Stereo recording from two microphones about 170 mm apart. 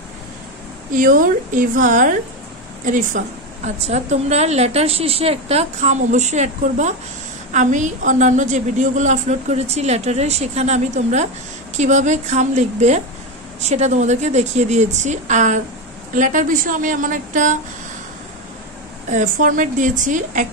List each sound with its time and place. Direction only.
0.9 s a woman's voice: 55° right (ahead or behind)
19.0 s a woman's voice: 45° right (ahead or behind)